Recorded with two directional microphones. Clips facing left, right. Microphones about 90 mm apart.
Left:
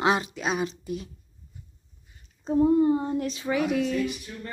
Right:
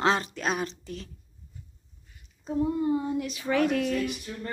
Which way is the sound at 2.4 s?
30° left (ahead or behind).